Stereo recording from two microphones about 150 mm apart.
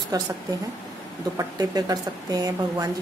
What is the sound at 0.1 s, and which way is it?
Speech, 25° right (ahead or behind).